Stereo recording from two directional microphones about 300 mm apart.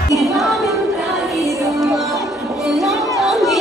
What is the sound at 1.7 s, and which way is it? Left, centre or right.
Music, centre.